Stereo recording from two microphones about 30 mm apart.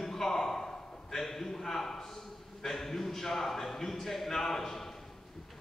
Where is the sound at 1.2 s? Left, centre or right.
Centre.